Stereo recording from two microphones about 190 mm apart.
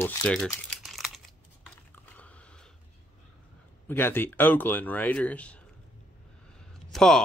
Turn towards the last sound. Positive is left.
turn(degrees=5)  # may be behind; listen again after turning